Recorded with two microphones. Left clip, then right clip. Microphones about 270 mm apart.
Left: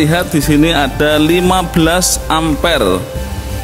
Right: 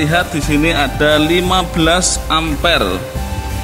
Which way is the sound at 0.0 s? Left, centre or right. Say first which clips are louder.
Left 2 dB; left.